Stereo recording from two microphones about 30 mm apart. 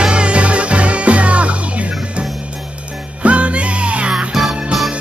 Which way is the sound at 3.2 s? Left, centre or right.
Right.